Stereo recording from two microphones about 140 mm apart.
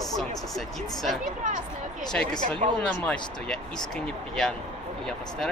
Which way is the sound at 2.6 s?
60° right (ahead or behind).